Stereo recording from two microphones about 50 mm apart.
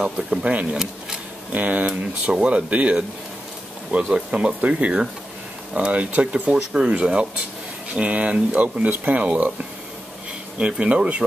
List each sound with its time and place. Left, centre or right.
0.0 s speech: centre
0.5 s speech: right
4.6 s speech: right
6.5 s speech: centre
10.8 s speech: right